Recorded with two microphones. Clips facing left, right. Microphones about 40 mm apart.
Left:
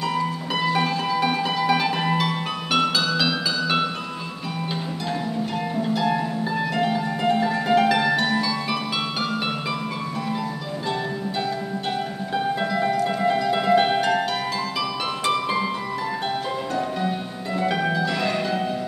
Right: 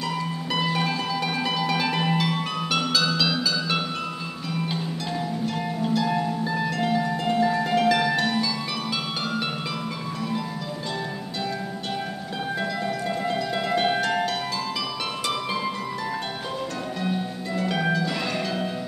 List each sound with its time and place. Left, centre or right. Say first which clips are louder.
0.7 s music: left 4 dB; centre
5.9 s music: even; centre
12.5 s music: left 3 dB; centre
17.6 s harp: left 2 dB; centre